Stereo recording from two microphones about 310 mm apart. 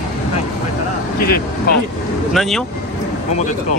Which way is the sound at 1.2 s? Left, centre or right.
Left.